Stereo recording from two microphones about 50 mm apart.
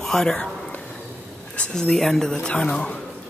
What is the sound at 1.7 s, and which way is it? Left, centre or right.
Speech, centre.